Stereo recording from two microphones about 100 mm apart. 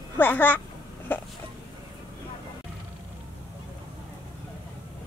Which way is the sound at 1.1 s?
20° left (ahead or behind).